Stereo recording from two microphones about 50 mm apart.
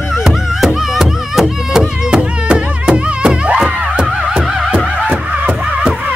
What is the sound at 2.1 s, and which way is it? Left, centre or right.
Music, centre.